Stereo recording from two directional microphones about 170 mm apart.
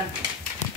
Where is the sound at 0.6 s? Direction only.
45° left (ahead or behind).